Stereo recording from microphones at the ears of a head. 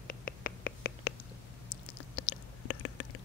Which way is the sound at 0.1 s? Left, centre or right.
Left.